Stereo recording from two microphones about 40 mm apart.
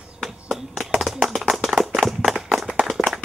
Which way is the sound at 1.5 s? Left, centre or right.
Centre.